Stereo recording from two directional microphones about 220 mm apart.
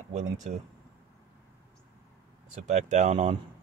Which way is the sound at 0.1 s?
30° right (ahead or behind).